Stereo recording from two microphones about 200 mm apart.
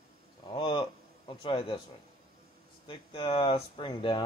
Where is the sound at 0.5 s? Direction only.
25° left (ahead or behind).